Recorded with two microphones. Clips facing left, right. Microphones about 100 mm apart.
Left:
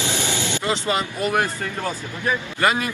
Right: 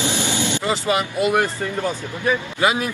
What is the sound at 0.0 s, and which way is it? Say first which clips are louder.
A man's voice: right 3 dB; 20° right (ahead or behind).